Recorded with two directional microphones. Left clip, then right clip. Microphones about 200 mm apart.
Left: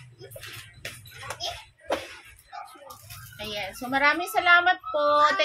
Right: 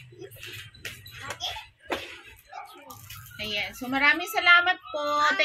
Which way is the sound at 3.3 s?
15° left (ahead or behind).